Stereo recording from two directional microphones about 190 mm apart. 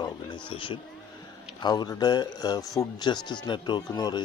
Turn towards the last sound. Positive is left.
turn(degrees=20)  # may be behind; listen again after turning